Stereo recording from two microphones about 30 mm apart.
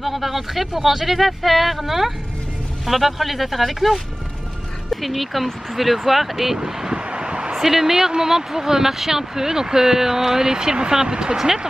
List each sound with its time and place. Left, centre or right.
0.0 s speech: centre
5.0 s speech: centre
6.6 s vehicle: right
7.1 s a sound: right
7.6 s speech: centre; by 11.3 s right
11.3 s speech: centre